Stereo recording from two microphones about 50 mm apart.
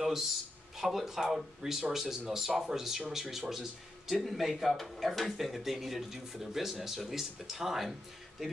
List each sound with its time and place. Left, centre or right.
0.7 s speech: centre